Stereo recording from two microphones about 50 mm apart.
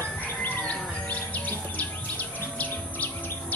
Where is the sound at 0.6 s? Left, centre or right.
Left.